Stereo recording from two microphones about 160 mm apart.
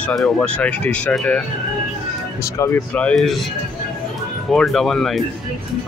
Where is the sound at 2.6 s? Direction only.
10° left (ahead or behind).